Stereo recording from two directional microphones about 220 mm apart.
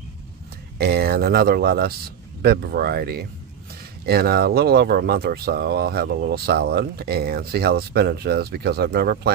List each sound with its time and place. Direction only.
0.7 s speech: 45° right (ahead or behind)